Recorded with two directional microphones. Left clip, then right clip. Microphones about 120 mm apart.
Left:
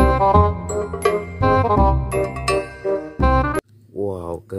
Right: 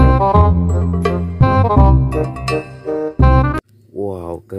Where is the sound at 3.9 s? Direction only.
15° right (ahead or behind).